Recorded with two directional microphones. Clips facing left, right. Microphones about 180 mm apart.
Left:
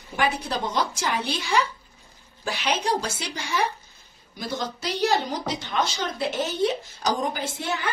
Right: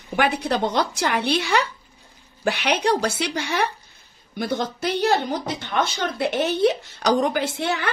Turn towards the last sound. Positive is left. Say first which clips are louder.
# right 6 dB
turn(degrees=-70)  # may be behind; listen again after turning